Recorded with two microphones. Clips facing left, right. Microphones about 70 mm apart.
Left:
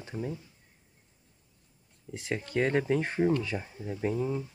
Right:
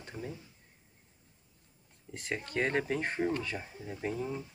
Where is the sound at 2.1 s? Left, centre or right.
Centre.